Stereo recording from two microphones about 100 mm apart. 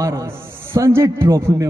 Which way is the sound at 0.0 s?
30° right (ahead or behind).